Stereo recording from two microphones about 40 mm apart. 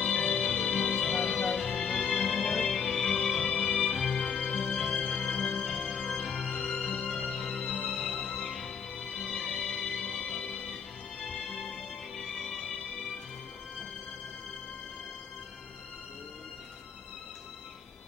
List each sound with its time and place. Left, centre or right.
0.1 s music: centre